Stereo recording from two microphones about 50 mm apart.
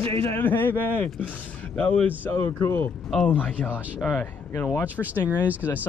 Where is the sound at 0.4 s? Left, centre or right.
Left.